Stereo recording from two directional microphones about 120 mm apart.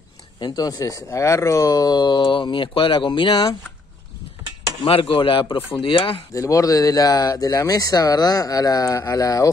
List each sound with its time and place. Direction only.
0.4 s speech: 30° left (ahead or behind)
4.8 s speech: 50° left (ahead or behind)
6.3 s speech: 25° left (ahead or behind)